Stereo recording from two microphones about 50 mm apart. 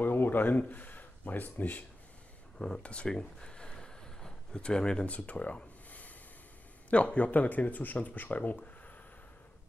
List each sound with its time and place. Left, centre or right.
0.0 s speech: left
2.8 s a sound: left
5.0 s speech: left